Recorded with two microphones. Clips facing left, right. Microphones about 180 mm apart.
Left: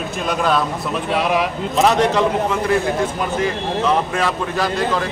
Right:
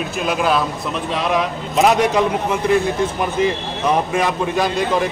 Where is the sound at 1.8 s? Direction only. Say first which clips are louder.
Even; 15° right (ahead or behind).